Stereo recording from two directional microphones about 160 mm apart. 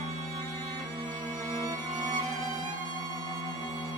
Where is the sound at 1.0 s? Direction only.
25° right (ahead or behind).